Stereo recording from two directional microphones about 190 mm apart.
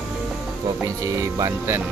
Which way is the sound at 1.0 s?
15° right (ahead or behind).